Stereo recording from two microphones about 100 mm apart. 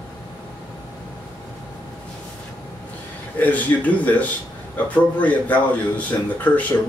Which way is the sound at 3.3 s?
15° left (ahead or behind).